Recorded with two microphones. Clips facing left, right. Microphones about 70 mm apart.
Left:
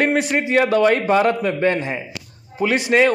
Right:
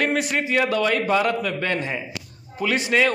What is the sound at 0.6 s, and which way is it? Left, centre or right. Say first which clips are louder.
A man's voice: left 6 dB; left.